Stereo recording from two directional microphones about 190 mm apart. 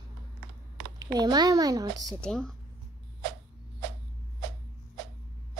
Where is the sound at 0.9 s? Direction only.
20° right (ahead or behind).